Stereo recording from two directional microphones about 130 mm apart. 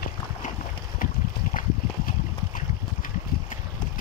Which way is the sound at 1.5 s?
90° left.